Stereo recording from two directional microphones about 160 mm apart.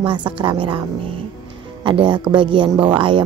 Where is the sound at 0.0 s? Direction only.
30° right (ahead or behind).